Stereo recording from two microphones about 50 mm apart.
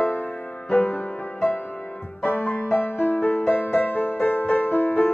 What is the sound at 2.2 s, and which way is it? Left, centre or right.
Music, left.